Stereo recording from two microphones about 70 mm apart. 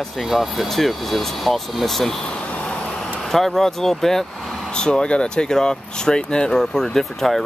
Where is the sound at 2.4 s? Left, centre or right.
Centre.